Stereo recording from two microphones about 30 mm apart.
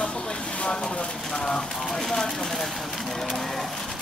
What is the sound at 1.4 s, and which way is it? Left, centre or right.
Speech, left.